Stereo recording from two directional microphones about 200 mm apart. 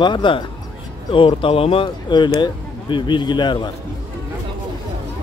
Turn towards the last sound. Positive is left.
turn(degrees=25)  # may be behind; listen again after turning